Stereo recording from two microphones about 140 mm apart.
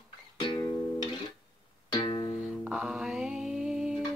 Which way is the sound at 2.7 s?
5° right (ahead or behind).